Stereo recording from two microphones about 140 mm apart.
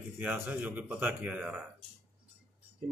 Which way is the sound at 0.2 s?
10° right (ahead or behind).